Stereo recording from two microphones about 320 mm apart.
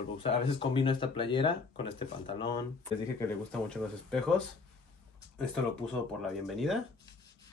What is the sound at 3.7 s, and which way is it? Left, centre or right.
Speech, centre.